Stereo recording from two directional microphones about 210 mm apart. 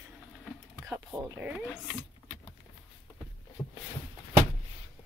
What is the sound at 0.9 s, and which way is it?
Speech, 10° right (ahead or behind).